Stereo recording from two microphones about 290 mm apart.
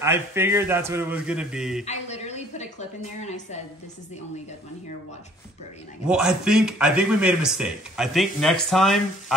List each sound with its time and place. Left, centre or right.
0.0 s a man's voice: centre
1.9 s a woman's voice: left
6.0 s a man's voice: centre